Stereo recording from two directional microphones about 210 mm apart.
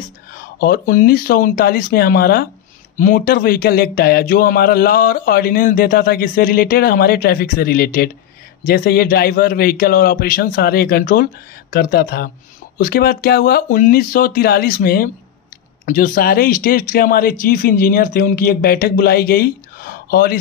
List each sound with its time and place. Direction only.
0.3 s speech: 45° left (ahead or behind)